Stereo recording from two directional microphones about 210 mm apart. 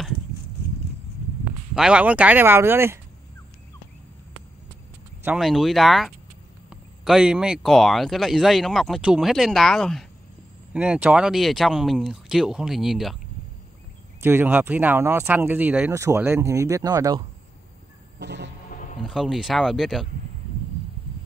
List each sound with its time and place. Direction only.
1.8 s speech: 5° right (ahead or behind)
5.2 s speech: 5° right (ahead or behind)
14.2 s speech: 10° right (ahead or behind)
18.2 s music: 55° right (ahead or behind)
18.7 s music: 40° left (ahead or behind)
19.0 s speech: centre (ahead or behind)